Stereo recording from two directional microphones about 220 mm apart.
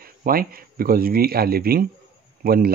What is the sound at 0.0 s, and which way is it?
Speech, 40° right (ahead or behind).